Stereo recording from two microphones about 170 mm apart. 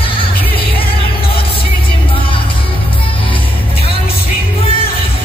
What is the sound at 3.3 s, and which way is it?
Music, 30° left (ahead or behind).